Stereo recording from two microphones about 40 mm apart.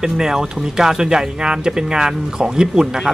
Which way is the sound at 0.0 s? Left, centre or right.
Centre.